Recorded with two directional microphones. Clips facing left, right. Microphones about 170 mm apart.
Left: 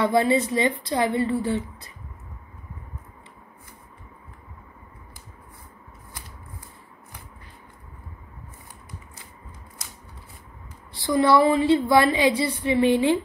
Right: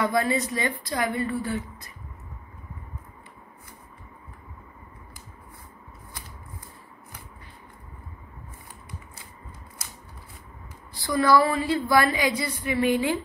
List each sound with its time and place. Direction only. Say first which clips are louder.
0.0 s a woman's voice: left 4 dB; 25° left (ahead or behind)
10.9 s a woman's voice: left 2 dB; 25° left (ahead or behind)